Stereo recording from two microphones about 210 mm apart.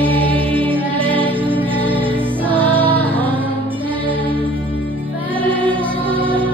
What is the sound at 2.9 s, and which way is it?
Music, 10° left (ahead or behind).